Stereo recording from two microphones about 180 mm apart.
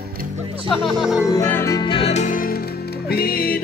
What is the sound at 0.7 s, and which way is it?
Speech, centre (ahead or behind).